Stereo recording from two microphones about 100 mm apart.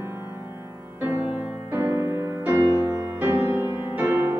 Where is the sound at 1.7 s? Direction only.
20° right (ahead or behind).